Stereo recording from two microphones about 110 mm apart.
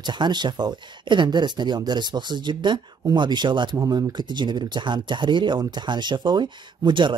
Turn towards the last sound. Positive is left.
turn(degrees=-45)  # may be behind; listen again after turning